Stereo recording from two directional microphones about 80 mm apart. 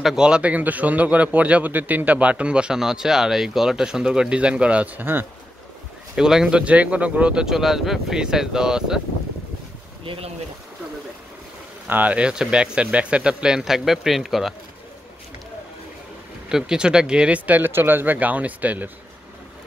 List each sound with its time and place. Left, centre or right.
0.0 s a man's voice: centre
6.1 s a man's voice: centre
11.9 s a man's voice: centre
16.4 s speech: centre